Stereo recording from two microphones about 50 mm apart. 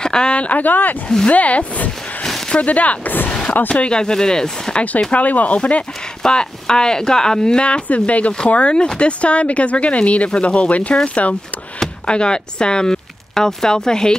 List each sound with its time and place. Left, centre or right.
0.0 s speech: centre
5.1 s speech: left; by 14.1 s centre